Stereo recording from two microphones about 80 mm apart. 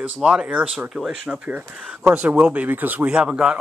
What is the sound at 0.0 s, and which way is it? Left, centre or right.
Speech, centre.